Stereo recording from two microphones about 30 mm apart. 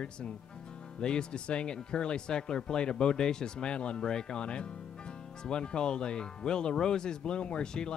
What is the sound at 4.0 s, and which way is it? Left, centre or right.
Speech, left.